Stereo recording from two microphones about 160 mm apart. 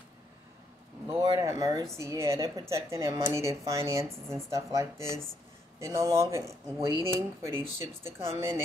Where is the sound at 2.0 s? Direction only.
20° right (ahead or behind).